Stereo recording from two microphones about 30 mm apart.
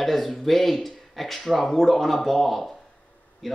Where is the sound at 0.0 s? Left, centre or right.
Centre.